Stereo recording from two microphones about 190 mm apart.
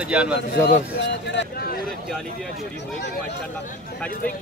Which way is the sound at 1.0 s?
65° left (ahead or behind).